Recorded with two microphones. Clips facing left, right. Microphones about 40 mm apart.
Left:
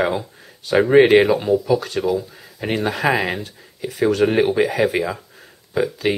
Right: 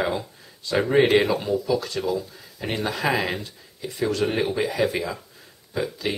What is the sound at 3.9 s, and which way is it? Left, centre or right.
Speech, left.